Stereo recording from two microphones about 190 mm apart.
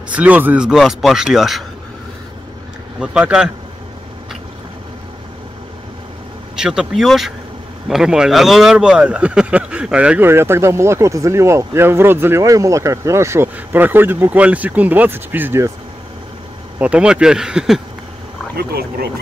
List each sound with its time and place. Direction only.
0.1 s speech: 10° right (ahead or behind)
3.0 s speech: 5° right (ahead or behind)
6.5 s speech: 5° right (ahead or behind)
16.7 s speech: 5° right (ahead or behind)
18.6 s speech: 55° right (ahead or behind)